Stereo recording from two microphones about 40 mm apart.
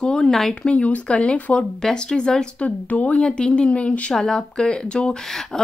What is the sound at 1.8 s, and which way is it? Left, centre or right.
Speech, centre.